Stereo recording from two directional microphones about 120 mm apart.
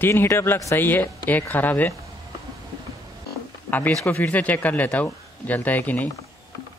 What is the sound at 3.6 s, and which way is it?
Speech, 15° left (ahead or behind).